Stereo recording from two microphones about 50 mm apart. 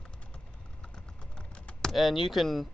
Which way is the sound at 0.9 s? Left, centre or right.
Centre.